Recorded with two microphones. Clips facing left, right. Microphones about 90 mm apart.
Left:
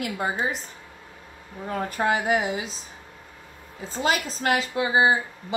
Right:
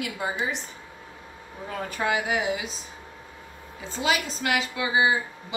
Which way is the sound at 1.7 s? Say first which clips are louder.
Left 3 dB; 40° left (ahead or behind).